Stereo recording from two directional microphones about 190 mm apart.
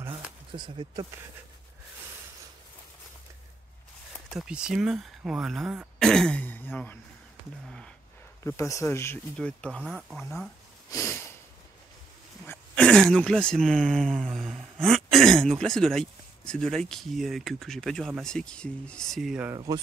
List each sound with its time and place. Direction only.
0.5 s speech: 25° right (ahead or behind)
4.3 s speech: 5° right (ahead or behind)
8.5 s speech: 15° left (ahead or behind); by 10.5 s centre (ahead or behind)
10.9 s speech: 15° left (ahead or behind)
12.4 s speech: 5° left (ahead or behind)
19.5 s speech: 20° right (ahead or behind)